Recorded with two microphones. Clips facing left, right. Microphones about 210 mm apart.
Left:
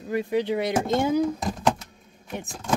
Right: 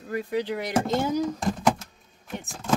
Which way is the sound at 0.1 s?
20° left (ahead or behind).